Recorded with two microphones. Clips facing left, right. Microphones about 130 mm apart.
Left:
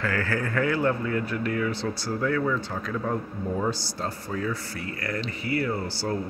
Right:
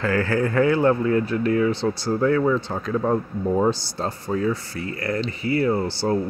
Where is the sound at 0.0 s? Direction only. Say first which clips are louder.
Right 6 dB; 25° right (ahead or behind).